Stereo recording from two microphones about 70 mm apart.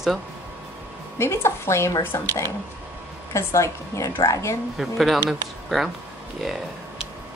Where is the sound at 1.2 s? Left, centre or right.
Left.